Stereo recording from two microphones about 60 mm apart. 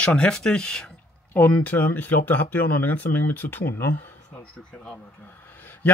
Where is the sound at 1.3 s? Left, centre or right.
Left.